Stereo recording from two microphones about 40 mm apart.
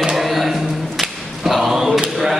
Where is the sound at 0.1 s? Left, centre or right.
Centre.